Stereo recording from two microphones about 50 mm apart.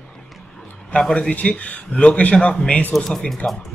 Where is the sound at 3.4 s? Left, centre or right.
Left.